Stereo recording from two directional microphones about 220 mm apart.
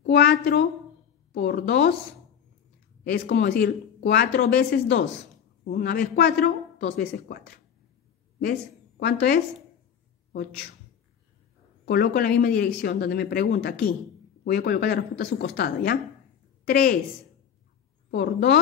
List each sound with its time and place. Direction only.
0.0 s speech: 50° left (ahead or behind)
3.0 s speech: 45° left (ahead or behind)
9.0 s speech: 45° left (ahead or behind)
11.8 s speech: 50° left (ahead or behind)
18.1 s speech: 50° left (ahead or behind)